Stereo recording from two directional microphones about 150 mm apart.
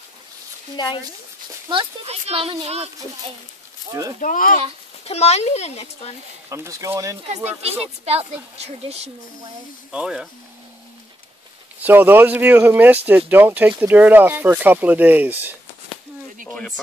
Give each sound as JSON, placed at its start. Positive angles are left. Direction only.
{"t": 0.7, "sound": "speech", "side_deg": 30}
{"t": 1.7, "sound": "speech", "side_deg": -40}
{"t": 4.2, "sound": "speech", "side_deg": 60}
{"t": 5.0, "sound": "speech", "side_deg": 45}
{"t": 6.5, "sound": "speech", "side_deg": -20}
{"t": 7.8, "sound": "speech", "side_deg": -45}
{"t": 9.8, "sound": "speech", "side_deg": -5}
{"t": 11.8, "sound": "speech", "side_deg": -15}
{"t": 16.4, "sound": "speech", "side_deg": 5}